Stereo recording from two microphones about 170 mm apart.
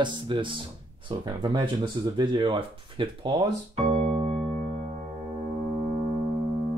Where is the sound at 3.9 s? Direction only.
35° right (ahead or behind).